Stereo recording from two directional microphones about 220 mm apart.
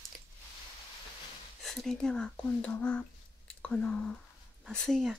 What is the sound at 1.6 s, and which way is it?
Speech, centre (ahead or behind).